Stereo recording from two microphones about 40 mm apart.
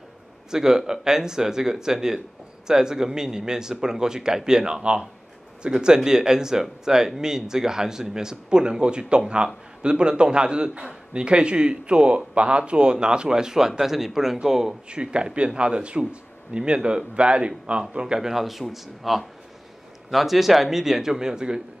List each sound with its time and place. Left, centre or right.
0.5 s a man's voice: centre
14.9 s a man's voice: right
18.3 s speech: centre